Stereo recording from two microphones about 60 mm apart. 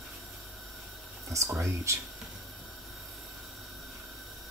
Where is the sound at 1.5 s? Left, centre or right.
Right.